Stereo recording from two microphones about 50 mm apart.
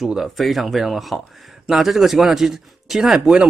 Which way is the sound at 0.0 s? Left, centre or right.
Centre.